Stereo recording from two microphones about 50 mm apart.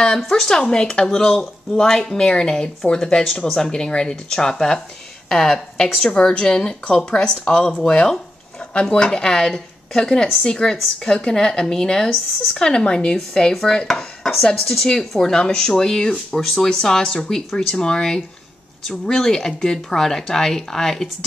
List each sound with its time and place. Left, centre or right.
0.2 s speech: centre
13.8 s dishes: centre
14.4 s speech: centre